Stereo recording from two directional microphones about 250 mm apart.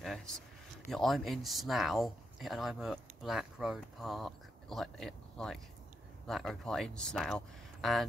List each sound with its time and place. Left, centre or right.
0.0 s speech: centre